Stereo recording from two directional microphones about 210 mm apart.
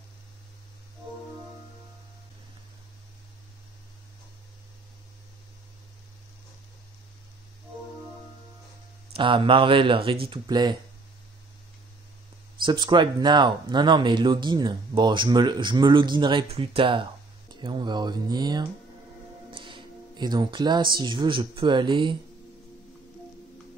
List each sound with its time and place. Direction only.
9.1 s speech: 25° right (ahead or behind)
12.6 s speech: 20° right (ahead or behind)